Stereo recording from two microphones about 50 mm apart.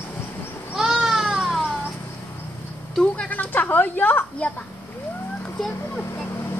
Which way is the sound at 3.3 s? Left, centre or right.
Left.